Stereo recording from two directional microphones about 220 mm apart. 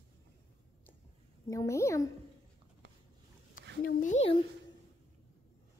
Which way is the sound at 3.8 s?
35° left (ahead or behind).